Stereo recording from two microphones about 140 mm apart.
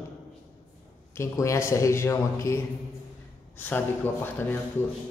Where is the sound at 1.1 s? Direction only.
20° left (ahead or behind).